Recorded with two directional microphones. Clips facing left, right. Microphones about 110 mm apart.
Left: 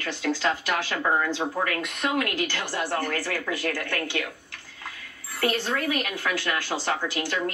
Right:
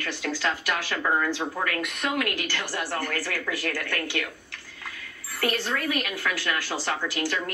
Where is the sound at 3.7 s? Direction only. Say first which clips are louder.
Left 2 dB; 40° left (ahead or behind).